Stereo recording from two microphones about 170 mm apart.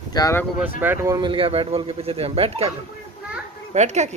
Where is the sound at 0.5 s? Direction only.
10° right (ahead or behind); by 2.7 s 35° right (ahead or behind).